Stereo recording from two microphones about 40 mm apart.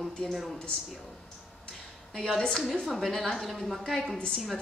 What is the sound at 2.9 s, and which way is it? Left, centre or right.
Speech, centre.